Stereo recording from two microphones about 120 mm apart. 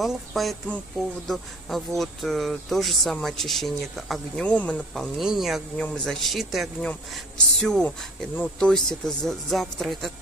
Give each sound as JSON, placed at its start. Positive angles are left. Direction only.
{"t": 0.0, "sound": "speech", "side_deg": 0}